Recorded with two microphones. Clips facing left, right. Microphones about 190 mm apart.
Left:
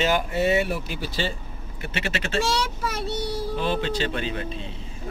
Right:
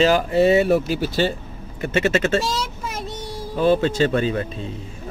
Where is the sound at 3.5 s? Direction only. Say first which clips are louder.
Right 10 dB; 45° right (ahead or behind).